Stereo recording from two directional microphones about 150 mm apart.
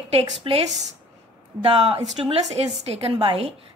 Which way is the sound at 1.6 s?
40° right (ahead or behind).